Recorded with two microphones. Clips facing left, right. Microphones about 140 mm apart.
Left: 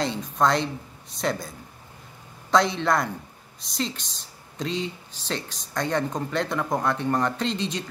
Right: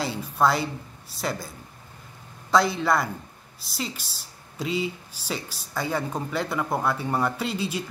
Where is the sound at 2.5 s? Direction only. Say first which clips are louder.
Even; 5° right (ahead or behind).